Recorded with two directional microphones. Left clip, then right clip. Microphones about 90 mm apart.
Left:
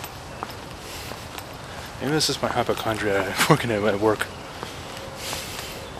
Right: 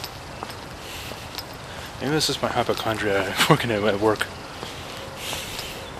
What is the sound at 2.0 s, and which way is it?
Speech, centre (ahead or behind).